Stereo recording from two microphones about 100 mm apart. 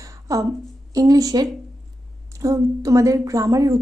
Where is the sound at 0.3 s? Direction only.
35° right (ahead or behind).